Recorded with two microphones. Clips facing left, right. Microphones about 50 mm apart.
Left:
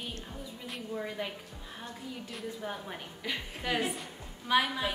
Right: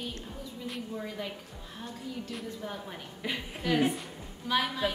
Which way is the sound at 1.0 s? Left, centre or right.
Centre.